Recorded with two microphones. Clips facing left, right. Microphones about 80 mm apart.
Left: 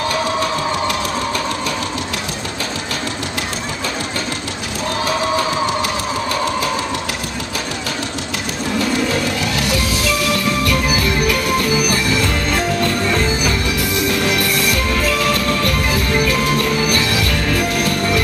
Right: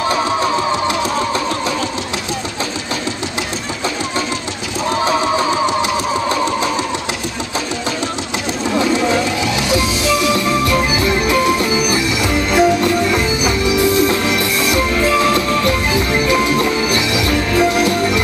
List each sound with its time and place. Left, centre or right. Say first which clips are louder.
5.8 s engine: right 3 dB; right
9.6 s music: right 3 dB; right